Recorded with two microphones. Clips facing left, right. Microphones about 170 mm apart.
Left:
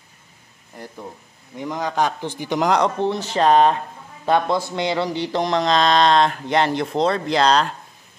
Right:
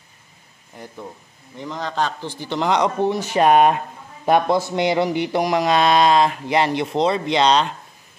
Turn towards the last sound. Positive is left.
turn(degrees=0)  # may be behind; listen again after turning